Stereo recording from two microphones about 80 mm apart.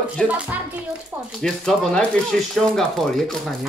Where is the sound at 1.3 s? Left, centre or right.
Centre.